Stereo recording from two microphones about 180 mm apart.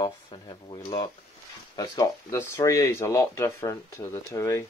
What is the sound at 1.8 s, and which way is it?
Speech, 15° left (ahead or behind).